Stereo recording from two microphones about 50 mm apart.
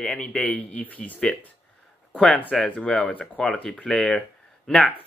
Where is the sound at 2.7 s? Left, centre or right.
Left.